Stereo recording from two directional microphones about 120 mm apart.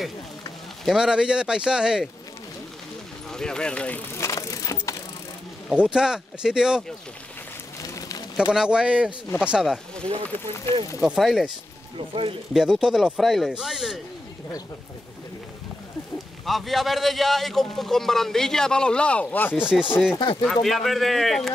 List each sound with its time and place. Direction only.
0.8 s speech: 5° right (ahead or behind)
3.3 s speech: 5° left (ahead or behind)
4.1 s crushing: 25° left (ahead or behind)
5.7 s a man's voice: 5° right (ahead or behind)
7.8 s a sound: 30° left (ahead or behind)
8.4 s a man's voice: 10° right (ahead or behind)
10.2 s speech: 20° left (ahead or behind)
11.0 s a man's voice: 5° right (ahead or behind)
12.1 s speech: 50° right (ahead or behind)
12.5 s a man's voice: 5° right (ahead or behind)
16.4 s a man's voice: centre (ahead or behind)
19.5 s a man's voice: 5° right (ahead or behind)